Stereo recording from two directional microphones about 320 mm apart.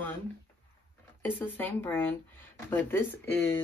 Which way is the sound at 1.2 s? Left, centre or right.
Centre.